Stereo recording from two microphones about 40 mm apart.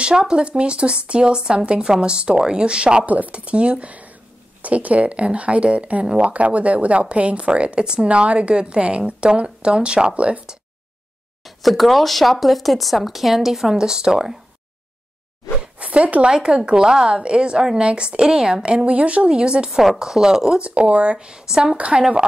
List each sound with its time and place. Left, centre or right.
0.0 s speech: right
3.1 s speech: right
3.3 s speech: right
11.4 s speech: centre
13.7 s speech: centre
15.8 s zipper: right
16.3 s speech: right
18.9 s speech: right
19.2 s speech: right
19.7 s speech: centre
20.6 s speech: right; by 21.7 s centre
21.7 s speech: right